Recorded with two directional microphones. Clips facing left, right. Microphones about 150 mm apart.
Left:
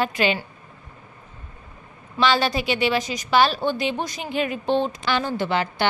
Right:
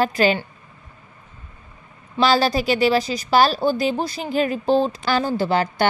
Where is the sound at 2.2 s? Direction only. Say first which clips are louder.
Right 3 dB; 40° right (ahead or behind).